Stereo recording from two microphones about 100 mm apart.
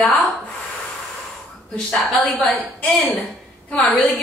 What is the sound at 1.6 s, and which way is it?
A woman's voice, 10° left (ahead or behind).